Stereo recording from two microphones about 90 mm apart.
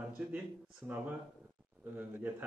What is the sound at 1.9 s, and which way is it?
Speech, 15° right (ahead or behind).